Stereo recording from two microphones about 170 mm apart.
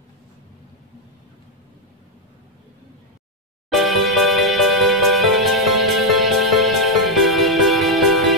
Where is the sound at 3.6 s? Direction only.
Centre (ahead or behind).